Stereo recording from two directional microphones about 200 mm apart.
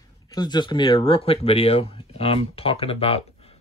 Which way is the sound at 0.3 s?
20° left (ahead or behind).